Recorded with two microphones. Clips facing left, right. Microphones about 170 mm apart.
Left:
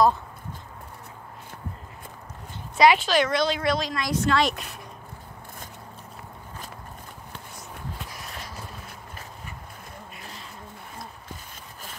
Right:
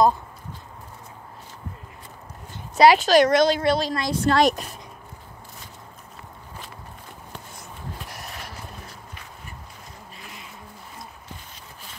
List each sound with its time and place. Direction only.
2.7 s speech: 40° right (ahead or behind)